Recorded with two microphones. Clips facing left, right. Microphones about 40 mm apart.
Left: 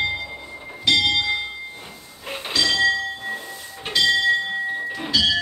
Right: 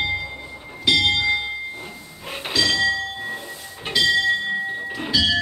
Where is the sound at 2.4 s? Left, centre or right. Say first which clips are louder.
Right 1 dB; centre.